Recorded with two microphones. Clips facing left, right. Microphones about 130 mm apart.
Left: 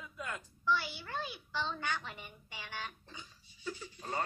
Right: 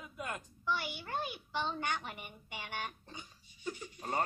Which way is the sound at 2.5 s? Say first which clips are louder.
Right 3 dB; 55° right (ahead or behind).